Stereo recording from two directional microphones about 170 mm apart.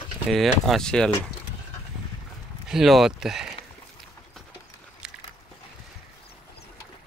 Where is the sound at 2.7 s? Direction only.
Centre (ahead or behind).